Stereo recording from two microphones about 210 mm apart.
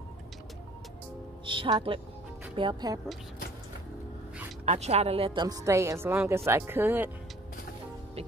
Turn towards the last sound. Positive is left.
turn(degrees=-10)  # may be behind; listen again after turning